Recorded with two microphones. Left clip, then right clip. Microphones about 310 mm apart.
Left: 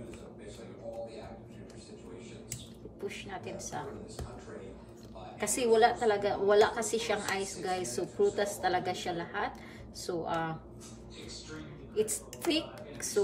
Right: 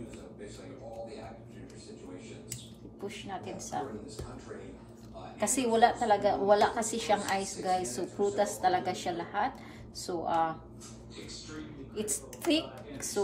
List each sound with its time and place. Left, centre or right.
3.1 s a woman's voice: centre
5.4 s a woman's voice: centre
11.9 s a woman's voice: centre